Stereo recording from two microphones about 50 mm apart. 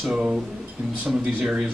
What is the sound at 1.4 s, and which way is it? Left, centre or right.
Speech, centre.